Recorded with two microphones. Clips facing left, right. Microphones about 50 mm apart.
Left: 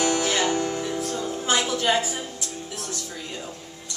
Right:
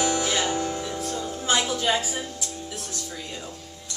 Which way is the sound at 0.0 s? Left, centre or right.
Centre.